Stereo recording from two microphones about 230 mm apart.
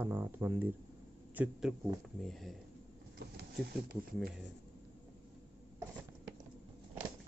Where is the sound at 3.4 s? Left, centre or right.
Right.